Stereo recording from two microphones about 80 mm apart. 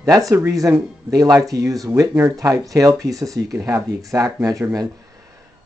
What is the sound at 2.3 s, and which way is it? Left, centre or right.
Speech, right.